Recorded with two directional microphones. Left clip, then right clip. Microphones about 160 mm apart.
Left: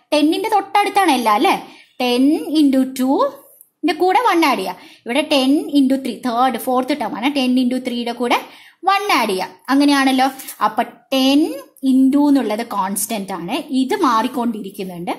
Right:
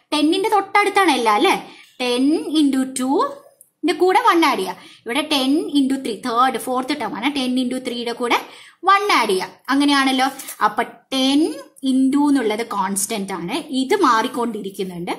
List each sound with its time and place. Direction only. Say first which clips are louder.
0.1 s a child's voice: left 2 dB; 25° left (ahead or behind)